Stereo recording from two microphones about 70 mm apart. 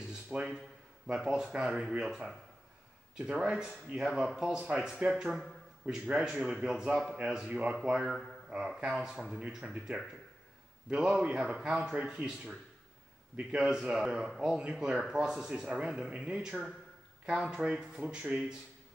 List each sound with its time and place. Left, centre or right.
0.3 s a sound: centre
1.0 s speech: centre
6.0 s speech: centre
8.1 s speech: centre
8.5 s speech: centre
11.0 s speech: centre
13.5 s speech: centre